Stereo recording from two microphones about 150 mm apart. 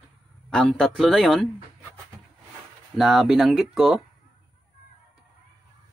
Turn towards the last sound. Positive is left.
turn(degrees=0)  # may be behind; listen again after turning